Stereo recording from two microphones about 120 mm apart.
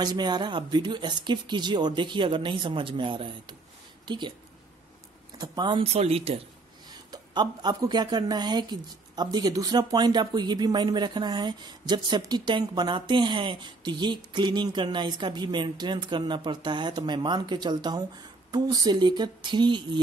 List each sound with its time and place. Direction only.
0.0 s a woman's voice: 35° right (ahead or behind)
5.4 s a woman's voice: 40° right (ahead or behind)
5.9 s a woman's voice: 55° right (ahead or behind)
6.9 s a woman's voice: 35° right (ahead or behind)